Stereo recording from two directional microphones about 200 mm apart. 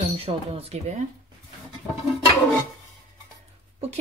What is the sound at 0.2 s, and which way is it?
Speech, 30° right (ahead or behind).